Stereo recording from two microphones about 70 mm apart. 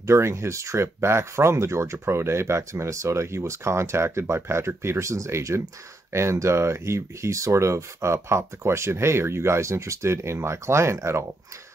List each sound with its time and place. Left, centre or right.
0.0 s speech: right